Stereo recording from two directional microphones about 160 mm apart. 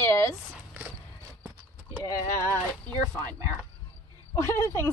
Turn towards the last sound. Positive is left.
turn(degrees=15)  # may be behind; listen again after turning